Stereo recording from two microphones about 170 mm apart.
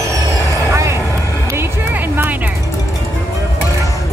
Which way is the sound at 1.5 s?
15° right (ahead or behind).